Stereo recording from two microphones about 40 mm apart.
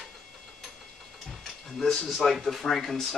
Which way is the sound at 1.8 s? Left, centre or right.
Centre.